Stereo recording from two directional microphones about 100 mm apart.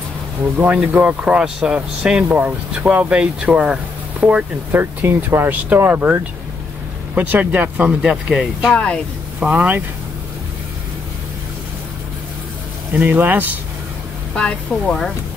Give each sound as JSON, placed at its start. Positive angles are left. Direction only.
{"t": 0.6, "sound": "speech", "side_deg": -15}
{"t": 4.7, "sound": "speech", "side_deg": -25}
{"t": 8.7, "sound": "speech", "side_deg": 10}
{"t": 9.4, "sound": "speech", "side_deg": -15}
{"t": 12.9, "sound": "speech", "side_deg": -15}
{"t": 14.3, "sound": "speech", "side_deg": 10}